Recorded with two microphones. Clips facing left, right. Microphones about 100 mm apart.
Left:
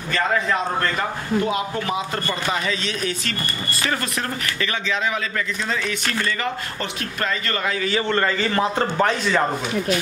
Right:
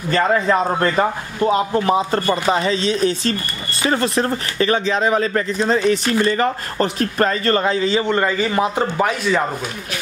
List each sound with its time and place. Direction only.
0.1 s a man's voice: 30° right (ahead or behind); by 9.4 s 5° right (ahead or behind)